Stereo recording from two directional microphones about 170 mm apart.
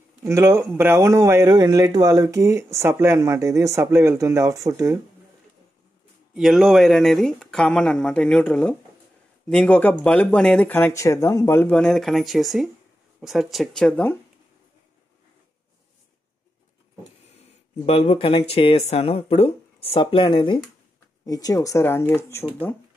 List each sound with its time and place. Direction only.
0.2 s a man's voice: 15° right (ahead or behind)
6.3 s speech: centre (ahead or behind)
17.8 s speech: 35° left (ahead or behind); by 22.5 s 15° left (ahead or behind)